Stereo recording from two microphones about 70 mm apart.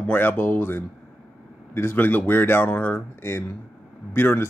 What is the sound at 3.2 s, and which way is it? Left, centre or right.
Speech, left.